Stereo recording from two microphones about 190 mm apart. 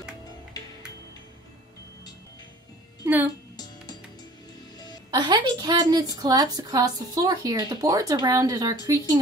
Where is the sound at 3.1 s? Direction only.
10° right (ahead or behind).